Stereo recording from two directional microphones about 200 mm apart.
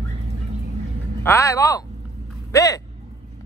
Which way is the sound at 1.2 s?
15° left (ahead or behind).